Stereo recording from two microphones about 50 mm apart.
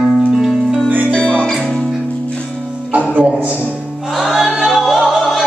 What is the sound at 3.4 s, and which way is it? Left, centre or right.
Music, right.